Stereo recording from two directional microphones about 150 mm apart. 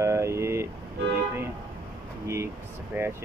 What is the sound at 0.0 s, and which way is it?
Vehicle, 20° right (ahead or behind).